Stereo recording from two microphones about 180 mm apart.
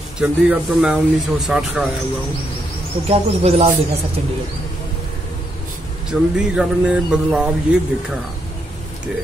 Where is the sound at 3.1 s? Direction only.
35° right (ahead or behind).